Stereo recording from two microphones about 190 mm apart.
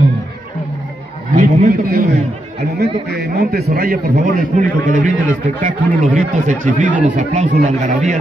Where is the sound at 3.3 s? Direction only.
50° right (ahead or behind).